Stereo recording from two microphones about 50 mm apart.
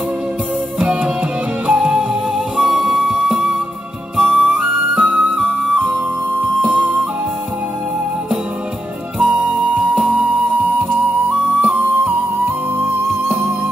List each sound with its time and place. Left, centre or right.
0.7 s music: centre
9.2 s music: right
11.6 s music: right